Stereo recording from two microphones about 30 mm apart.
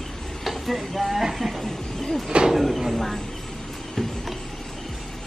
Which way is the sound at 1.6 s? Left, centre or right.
Centre.